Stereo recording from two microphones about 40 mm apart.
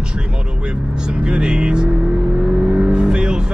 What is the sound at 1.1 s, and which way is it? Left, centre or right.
Speech, right.